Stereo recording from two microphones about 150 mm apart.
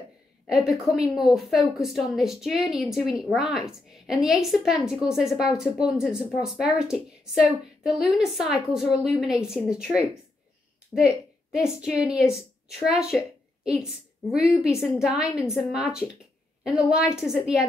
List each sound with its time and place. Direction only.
0.5 s a woman's voice: centre (ahead or behind)
11.5 s a woman's voice: 5° right (ahead or behind)
14.3 s a woman's voice: 5° right (ahead or behind)
17.2 s a woman's voice: centre (ahead or behind)